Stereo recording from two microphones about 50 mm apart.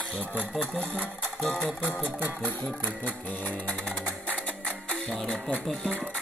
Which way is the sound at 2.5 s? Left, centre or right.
Left.